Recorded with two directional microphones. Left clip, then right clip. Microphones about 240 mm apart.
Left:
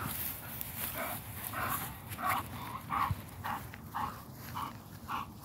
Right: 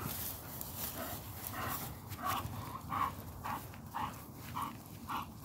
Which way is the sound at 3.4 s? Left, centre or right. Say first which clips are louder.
Left 3 dB; centre.